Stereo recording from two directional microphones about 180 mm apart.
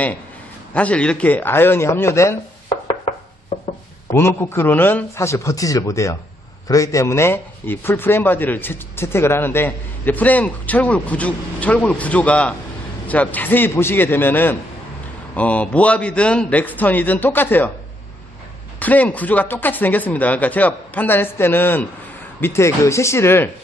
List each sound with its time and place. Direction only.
0.7 s speech: 5° left (ahead or behind)
4.1 s speech: 15° left (ahead or behind)
18.8 s speech: 10° left (ahead or behind)